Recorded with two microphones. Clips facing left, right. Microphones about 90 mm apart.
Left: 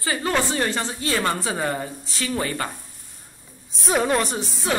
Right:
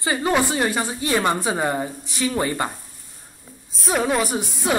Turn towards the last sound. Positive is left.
turn(degrees=-10)  # may be behind; listen again after turning